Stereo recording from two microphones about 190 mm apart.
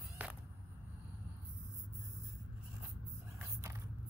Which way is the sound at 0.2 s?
10° right (ahead or behind).